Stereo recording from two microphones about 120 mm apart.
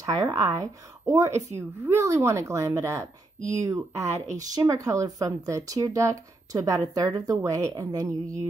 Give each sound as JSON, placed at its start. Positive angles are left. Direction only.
{"t": 0.0, "sound": "speech", "side_deg": -30}